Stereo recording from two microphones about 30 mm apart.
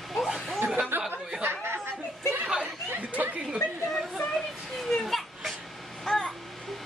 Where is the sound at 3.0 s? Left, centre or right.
Right.